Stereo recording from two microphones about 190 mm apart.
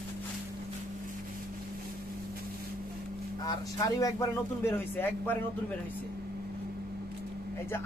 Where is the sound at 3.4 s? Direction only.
20° left (ahead or behind).